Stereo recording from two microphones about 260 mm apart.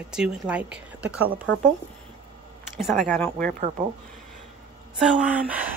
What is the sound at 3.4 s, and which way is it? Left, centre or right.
Speech, right.